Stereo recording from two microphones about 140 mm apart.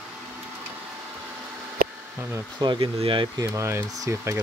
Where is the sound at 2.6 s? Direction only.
35° right (ahead or behind).